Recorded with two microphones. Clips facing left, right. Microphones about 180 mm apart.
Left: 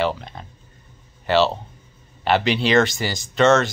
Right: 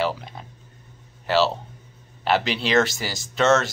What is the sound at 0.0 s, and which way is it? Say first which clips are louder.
Speech: left 2 dB; 5° right (ahead or behind).